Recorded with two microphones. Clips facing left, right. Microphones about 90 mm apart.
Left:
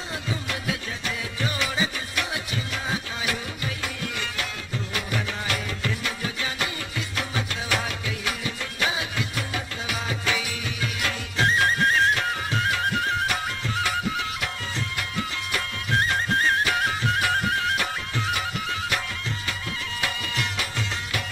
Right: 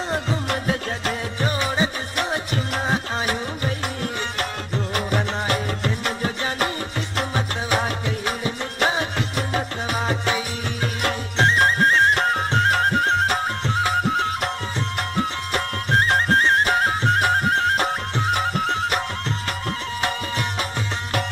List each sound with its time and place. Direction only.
0.1 s music: 45° right (ahead or behind)
10.2 s music: 30° right (ahead or behind)
11.0 s music: 45° right (ahead or behind)